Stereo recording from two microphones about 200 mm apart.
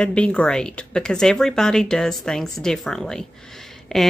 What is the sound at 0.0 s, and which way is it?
Speech, 5° left (ahead or behind).